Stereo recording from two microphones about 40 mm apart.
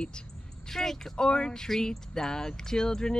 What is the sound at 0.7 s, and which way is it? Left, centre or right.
Speech, centre.